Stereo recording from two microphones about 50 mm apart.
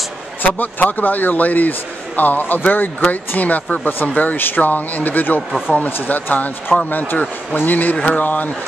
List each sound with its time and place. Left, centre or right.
0.4 s a man's voice: left